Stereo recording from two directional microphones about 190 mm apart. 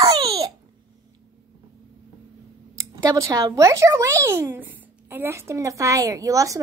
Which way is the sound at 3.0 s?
20° right (ahead or behind).